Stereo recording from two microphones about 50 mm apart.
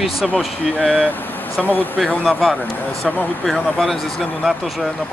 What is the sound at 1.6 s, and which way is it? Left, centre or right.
Speech, left.